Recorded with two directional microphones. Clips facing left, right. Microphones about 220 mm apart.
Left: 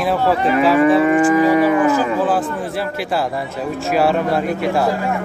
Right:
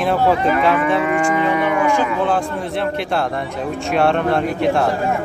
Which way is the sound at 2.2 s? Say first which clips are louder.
Left 1 dB; 5° left (ahead or behind).